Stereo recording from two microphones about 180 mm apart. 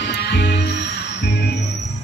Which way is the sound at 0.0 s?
70° left (ahead or behind).